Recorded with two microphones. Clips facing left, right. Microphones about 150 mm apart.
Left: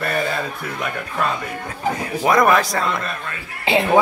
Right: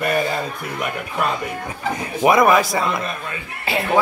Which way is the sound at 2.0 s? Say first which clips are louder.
Right 4 dB; 20° right (ahead or behind).